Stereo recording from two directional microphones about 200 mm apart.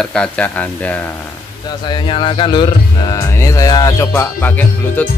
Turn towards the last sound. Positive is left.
turn(degrees=10)  # may be behind; listen again after turning